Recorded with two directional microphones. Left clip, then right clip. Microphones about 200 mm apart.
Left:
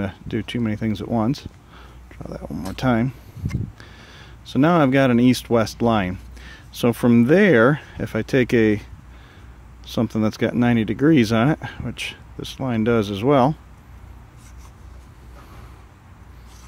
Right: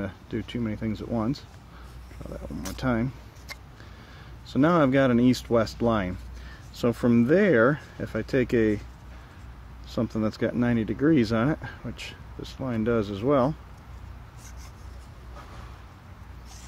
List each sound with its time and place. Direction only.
0.0 s speech: 35° left (ahead or behind)
4.1 s speech: 35° left (ahead or behind)
9.9 s speech: 35° left (ahead or behind)